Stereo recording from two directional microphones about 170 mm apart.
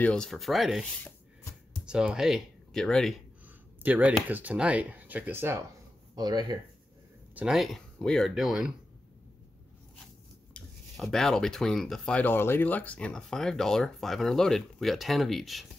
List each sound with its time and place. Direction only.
0.0 s speech: 5° left (ahead or behind)
3.8 s speech: 10° right (ahead or behind)
6.1 s speech: 25° right (ahead or behind)
7.3 s speech: centre (ahead or behind)
10.5 s speech: 5° left (ahead or behind)